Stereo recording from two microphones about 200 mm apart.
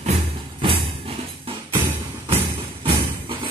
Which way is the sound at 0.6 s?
25° right (ahead or behind).